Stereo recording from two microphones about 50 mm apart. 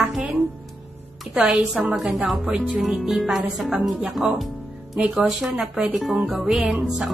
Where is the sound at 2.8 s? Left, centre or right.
Centre.